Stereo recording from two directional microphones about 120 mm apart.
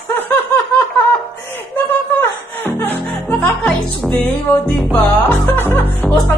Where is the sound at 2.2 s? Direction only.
15° left (ahead or behind).